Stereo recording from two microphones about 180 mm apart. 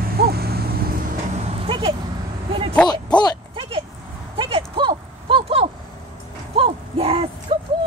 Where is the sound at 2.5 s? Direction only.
30° right (ahead or behind).